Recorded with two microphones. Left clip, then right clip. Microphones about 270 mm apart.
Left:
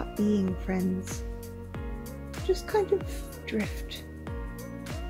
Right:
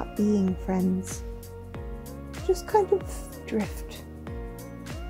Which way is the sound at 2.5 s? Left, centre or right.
Centre.